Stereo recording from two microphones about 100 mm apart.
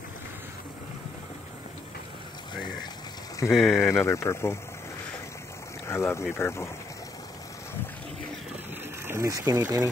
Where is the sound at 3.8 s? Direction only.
25° left (ahead or behind).